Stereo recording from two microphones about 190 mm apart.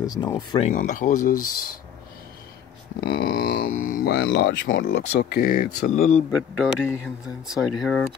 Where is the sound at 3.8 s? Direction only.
50° left (ahead or behind).